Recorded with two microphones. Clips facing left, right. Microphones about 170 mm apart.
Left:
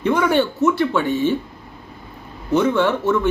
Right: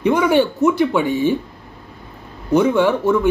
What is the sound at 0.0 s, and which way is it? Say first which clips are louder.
A man's voice: right 2 dB; 15° right (ahead or behind).